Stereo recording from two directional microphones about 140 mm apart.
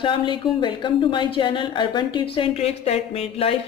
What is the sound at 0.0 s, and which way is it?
Speech, 35° left (ahead or behind).